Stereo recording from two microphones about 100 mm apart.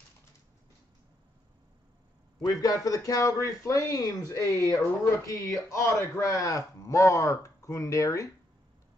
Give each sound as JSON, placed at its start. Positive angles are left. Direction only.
{"t": 2.4, "sound": "speech", "side_deg": 35}